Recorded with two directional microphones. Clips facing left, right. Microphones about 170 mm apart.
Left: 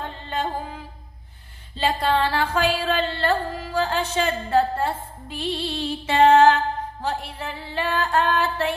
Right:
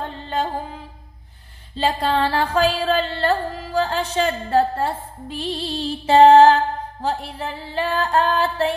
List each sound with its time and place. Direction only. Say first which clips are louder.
1.8 s music: right 1 dB; 35° right (ahead or behind)